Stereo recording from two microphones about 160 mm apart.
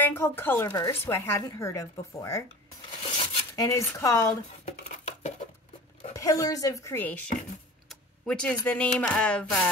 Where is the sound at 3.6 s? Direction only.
20° left (ahead or behind).